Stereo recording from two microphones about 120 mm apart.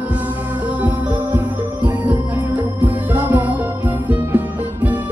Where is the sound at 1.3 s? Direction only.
15° right (ahead or behind).